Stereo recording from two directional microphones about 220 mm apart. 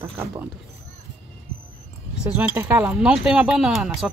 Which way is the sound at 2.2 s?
10° right (ahead or behind).